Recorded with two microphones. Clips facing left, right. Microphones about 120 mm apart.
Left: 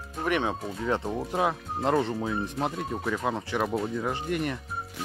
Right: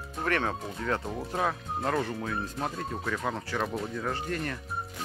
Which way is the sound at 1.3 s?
15° left (ahead or behind).